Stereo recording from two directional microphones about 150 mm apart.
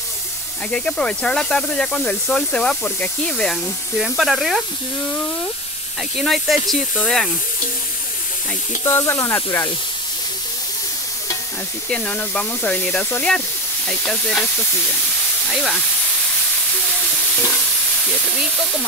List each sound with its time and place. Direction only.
0.7 s speech: 5° left (ahead or behind)
6.1 s speech: centre (ahead or behind)
8.8 s speech: 15° left (ahead or behind)
11.9 s speech: 5° left (ahead or behind)
18.2 s speech: centre (ahead or behind)